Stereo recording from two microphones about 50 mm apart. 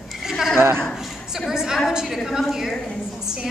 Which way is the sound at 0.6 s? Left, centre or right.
Right.